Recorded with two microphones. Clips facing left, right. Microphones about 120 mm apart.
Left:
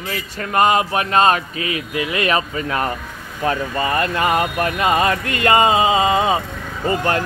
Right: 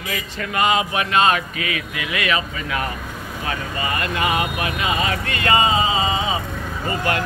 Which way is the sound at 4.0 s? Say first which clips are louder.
Left 3 dB; 40° left (ahead or behind).